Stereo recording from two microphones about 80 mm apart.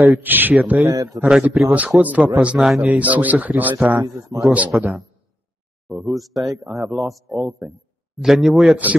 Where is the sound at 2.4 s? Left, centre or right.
Centre.